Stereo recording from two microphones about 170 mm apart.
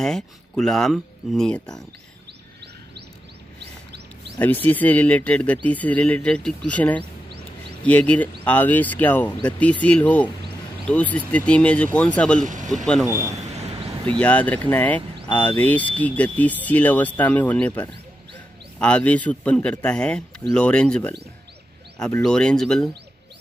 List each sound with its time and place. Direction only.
0.0 s speech: 5° left (ahead or behind)
4.4 s speech: 10° left (ahead or behind)
12.4 s speech: 45° right (ahead or behind)
12.8 s speech: 5° left (ahead or behind)